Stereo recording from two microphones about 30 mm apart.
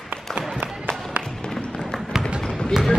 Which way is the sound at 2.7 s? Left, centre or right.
Centre.